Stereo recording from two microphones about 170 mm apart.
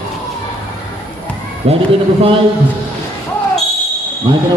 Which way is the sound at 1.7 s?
35° right (ahead or behind).